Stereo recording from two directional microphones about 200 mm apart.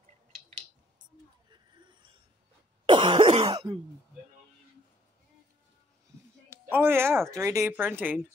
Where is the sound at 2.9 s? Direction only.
25° right (ahead or behind).